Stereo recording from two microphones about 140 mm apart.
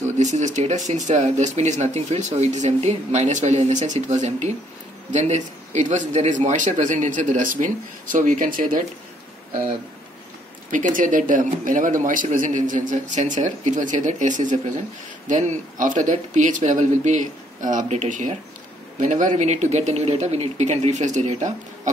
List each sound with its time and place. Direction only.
0.2 s speech: 60° right (ahead or behind); by 8.8 s 80° right
10.7 s speech: 70° right (ahead or behind)